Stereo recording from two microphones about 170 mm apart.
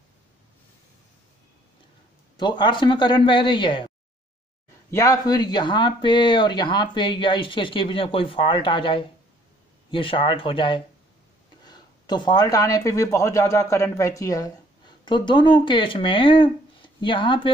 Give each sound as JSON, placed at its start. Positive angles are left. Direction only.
{"t": 2.3, "sound": "speech", "side_deg": 25}
{"t": 4.9, "sound": "speech", "side_deg": 20}